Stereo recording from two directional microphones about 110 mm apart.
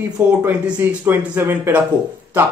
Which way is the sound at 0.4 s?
15° right (ahead or behind).